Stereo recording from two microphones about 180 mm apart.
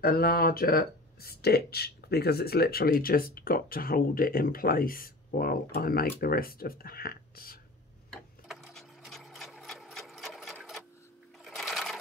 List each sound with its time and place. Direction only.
0.0 s speech: 60° left (ahead or behind)
8.1 s sewing machine: centre (ahead or behind)